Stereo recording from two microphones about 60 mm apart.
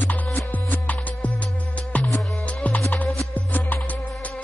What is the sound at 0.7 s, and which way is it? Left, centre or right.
Music, left.